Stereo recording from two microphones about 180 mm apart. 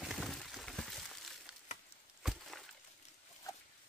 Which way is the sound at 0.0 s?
Centre (ahead or behind).